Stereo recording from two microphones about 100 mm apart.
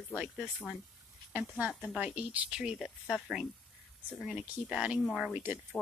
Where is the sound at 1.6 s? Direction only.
10° right (ahead or behind).